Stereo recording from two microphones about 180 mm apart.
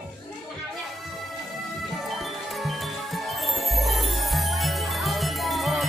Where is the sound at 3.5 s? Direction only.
Centre (ahead or behind).